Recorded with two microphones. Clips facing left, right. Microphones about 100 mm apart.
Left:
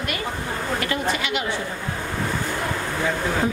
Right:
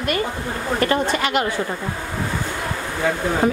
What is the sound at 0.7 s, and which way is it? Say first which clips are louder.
Speech: right 7 dB; 40° right (ahead or behind).